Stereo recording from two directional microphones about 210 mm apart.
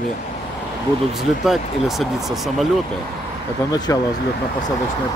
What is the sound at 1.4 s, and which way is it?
Speech, centre (ahead or behind).